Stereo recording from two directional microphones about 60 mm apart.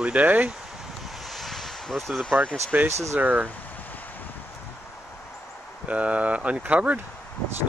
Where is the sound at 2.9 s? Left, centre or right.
Right.